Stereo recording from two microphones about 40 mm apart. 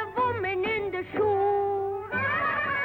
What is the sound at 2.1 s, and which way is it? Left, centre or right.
Music, left.